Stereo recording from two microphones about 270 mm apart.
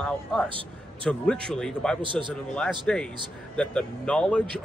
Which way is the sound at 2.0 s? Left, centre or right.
Centre.